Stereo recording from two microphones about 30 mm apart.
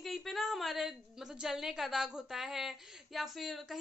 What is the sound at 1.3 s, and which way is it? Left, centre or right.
Speech, centre.